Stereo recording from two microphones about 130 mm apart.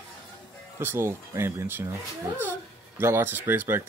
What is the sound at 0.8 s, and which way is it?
Speech, 20° right (ahead or behind).